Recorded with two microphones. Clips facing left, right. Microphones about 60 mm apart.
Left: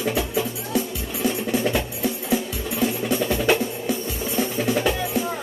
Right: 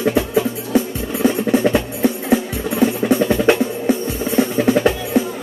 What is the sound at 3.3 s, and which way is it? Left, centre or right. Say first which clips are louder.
Music: right 6 dB; right.